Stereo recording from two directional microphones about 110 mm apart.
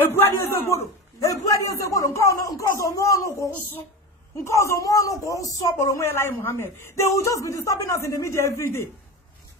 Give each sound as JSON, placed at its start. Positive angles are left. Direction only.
{"t": 0.0, "sound": "a sound", "side_deg": 20}
{"t": 0.4, "sound": "speech", "side_deg": 25}
{"t": 4.5, "sound": "speech", "side_deg": 25}